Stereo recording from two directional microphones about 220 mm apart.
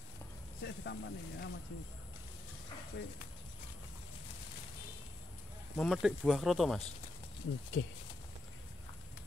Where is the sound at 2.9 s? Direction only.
50° left (ahead or behind).